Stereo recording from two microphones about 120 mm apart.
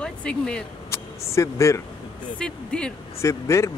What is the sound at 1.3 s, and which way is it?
Speech, 25° left (ahead or behind).